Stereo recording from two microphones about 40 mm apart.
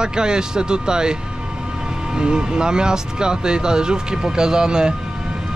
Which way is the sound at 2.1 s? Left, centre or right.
Centre.